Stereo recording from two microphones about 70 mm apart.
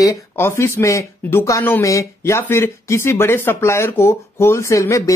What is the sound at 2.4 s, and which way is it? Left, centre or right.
Speech, left.